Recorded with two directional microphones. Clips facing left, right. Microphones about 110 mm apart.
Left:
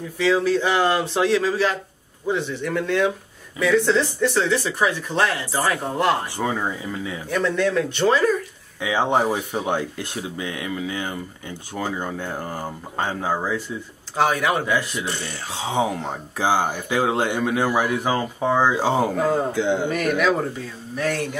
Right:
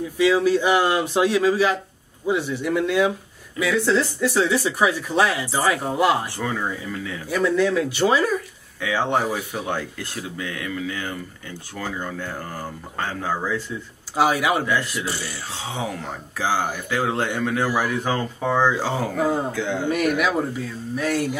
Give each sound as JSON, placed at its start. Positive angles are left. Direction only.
{"t": 0.2, "sound": "speech", "side_deg": -10}
{"t": 6.3, "sound": "speech", "side_deg": 20}
{"t": 7.2, "sound": "speech", "side_deg": -5}
{"t": 8.8, "sound": "speech", "side_deg": 20}
{"t": 14.1, "sound": "speech", "side_deg": -5}
{"t": 15.5, "sound": "speech", "side_deg": 20}
{"t": 19.9, "sound": "speech", "side_deg": -10}